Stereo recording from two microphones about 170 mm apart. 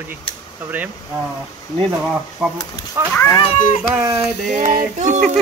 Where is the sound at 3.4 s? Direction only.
40° left (ahead or behind).